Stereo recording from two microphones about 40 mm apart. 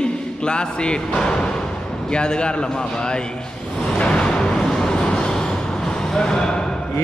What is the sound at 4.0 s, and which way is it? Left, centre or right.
Vehicle, left.